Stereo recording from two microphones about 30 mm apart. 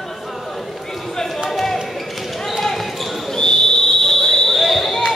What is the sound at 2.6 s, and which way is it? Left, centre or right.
Basketball bounce, centre.